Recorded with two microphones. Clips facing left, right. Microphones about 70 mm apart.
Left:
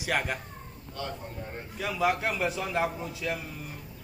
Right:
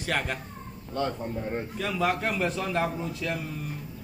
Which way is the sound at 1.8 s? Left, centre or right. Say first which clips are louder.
Left 1 dB; centre.